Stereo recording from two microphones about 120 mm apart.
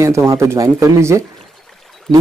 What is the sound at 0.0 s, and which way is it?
Speech, 25° right (ahead or behind).